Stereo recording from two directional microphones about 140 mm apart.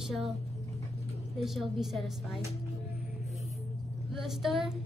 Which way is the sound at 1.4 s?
Centre (ahead or behind).